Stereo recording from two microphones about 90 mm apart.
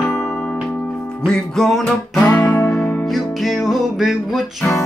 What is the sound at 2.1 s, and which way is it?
Guitar, 15° left (ahead or behind).